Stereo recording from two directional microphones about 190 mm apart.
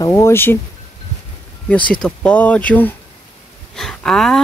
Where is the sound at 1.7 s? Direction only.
5° left (ahead or behind).